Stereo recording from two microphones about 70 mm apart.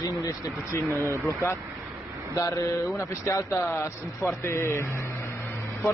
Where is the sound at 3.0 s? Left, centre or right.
Left.